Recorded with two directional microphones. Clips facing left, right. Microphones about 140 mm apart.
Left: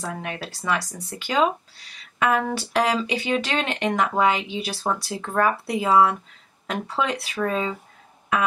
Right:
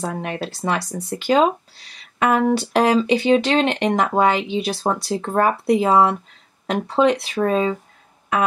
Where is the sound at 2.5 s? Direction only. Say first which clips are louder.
Right 6 dB; 25° right (ahead or behind).